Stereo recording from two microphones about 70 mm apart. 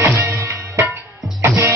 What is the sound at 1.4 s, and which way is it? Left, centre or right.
Music, right.